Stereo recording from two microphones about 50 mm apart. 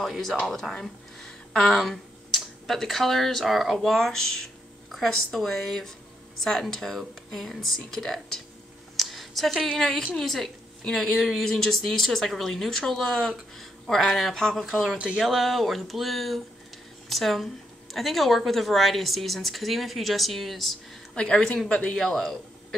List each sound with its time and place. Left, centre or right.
0.0 s speech: centre
0.7 s speech: centre
8.9 s a sound: centre
9.7 s speech: centre
21.1 s speech: centre
21.9 s speech: centre